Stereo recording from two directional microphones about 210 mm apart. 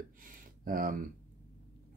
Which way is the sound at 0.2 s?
40° right (ahead or behind).